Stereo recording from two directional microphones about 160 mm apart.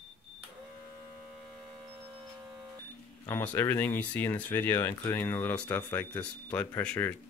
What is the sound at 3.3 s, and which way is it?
Speech, 15° left (ahead or behind).